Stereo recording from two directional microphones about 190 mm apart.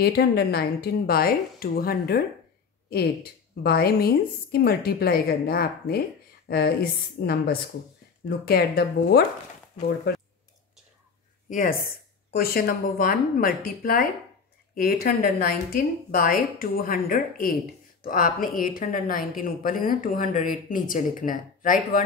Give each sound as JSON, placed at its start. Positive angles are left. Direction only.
{"t": 0.0, "sound": "a woman's voice", "side_deg": 55}
{"t": 10.1, "sound": "a sound", "side_deg": 60}
{"t": 11.4, "sound": "a woman's voice", "side_deg": 45}